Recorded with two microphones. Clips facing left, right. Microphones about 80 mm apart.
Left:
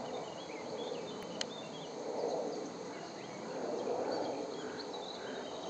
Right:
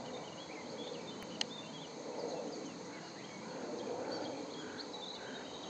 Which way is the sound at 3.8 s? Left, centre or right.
Left.